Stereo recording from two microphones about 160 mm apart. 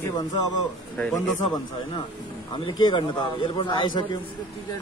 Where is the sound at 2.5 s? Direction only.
30° left (ahead or behind).